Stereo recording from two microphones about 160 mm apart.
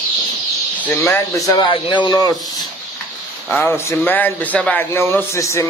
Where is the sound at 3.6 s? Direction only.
15° left (ahead or behind).